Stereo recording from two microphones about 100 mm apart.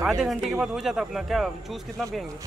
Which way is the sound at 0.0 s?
5° right (ahead or behind).